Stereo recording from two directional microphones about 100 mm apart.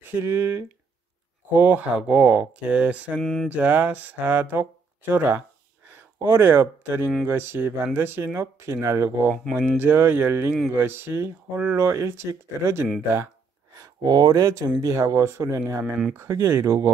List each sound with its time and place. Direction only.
0.1 s speech: 20° right (ahead or behind)
3.2 s a sound: 5° left (ahead or behind)
3.4 s speech: 15° right (ahead or behind)
13.7 s speech: 40° right (ahead or behind)
15.8 s speech: 10° right (ahead or behind)
16.1 s speech: 30° right (ahead or behind)